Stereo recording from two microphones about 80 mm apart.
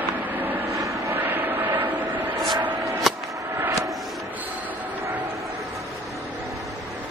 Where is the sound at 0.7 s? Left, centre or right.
Right.